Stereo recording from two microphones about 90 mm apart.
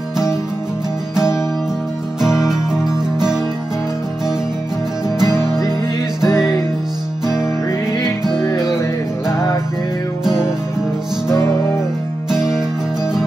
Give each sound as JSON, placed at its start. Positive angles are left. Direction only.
{"t": 1.1, "sound": "music", "side_deg": 30}
{"t": 2.7, "sound": "music", "side_deg": -5}
{"t": 5.2, "sound": "music", "side_deg": 30}
{"t": 8.4, "sound": "music", "side_deg": 35}
{"t": 12.3, "sound": "music", "side_deg": -5}